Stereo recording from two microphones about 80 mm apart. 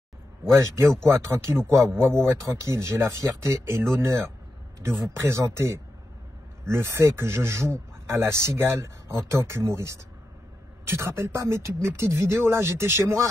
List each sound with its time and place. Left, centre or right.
1.0 s speech: right
4.8 s speech: right